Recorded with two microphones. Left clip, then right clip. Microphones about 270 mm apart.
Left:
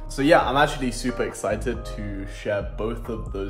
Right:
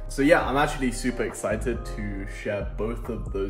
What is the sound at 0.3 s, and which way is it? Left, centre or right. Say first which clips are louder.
Speech: left 4 dB; centre.